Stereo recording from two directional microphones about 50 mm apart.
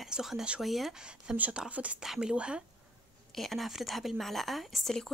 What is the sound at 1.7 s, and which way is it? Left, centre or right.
Speech, right.